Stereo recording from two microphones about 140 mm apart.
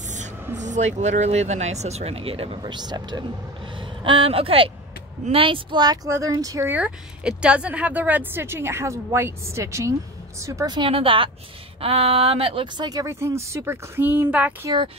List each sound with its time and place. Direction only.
0.6 s speech: 60° right (ahead or behind); by 2.6 s 45° right (ahead or behind)
2.6 s speech: 30° right (ahead or behind); by 14.7 s 15° right (ahead or behind)